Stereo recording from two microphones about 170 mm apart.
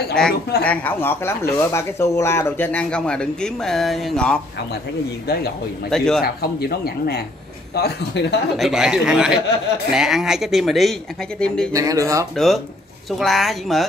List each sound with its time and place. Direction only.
0.2 s speech: 5° left (ahead or behind)
5.9 s speech: 5° left (ahead or behind)
6.2 s speech: 65° left (ahead or behind)
7.7 s a man's voice: 80° left
8.5 s speech: centre (ahead or behind)
11.7 s speech: 20° right (ahead or behind)
12.4 s speech: centre (ahead or behind)